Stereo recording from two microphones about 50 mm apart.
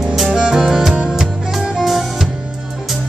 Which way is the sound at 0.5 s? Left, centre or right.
Centre.